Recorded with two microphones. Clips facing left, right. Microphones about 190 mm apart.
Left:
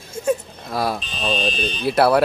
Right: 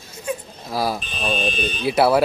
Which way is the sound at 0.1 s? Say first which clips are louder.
Left 7 dB; 45° left (ahead or behind).